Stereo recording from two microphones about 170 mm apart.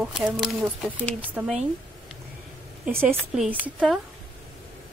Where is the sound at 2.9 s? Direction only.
15° right (ahead or behind).